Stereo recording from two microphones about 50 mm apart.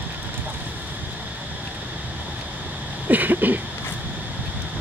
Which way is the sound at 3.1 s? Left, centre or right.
Right.